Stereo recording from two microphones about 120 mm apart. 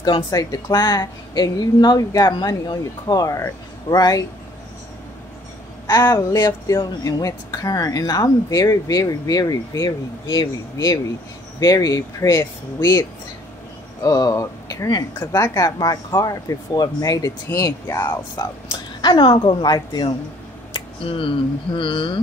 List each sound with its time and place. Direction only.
0.0 s speech: 30° left (ahead or behind)
6.1 s speech: 35° left (ahead or behind)
14.0 s speech: 30° left (ahead or behind)
18.7 s speech: 40° left (ahead or behind)
20.7 s a sound: 45° left (ahead or behind)
21.7 s speech: 45° left (ahead or behind)